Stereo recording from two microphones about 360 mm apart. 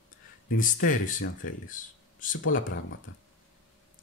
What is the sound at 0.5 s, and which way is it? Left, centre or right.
Speech, left.